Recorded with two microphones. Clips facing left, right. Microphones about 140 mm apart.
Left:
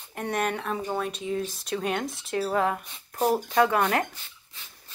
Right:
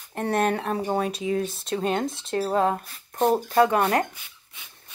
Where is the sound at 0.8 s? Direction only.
35° right (ahead or behind).